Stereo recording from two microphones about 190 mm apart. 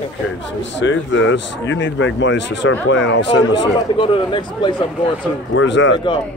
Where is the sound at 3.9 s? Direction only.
25° left (ahead or behind).